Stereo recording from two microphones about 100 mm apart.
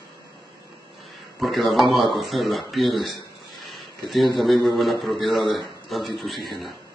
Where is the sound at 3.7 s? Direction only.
Centre (ahead or behind).